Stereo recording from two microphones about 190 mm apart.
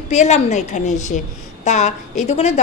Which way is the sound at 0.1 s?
40° left (ahead or behind).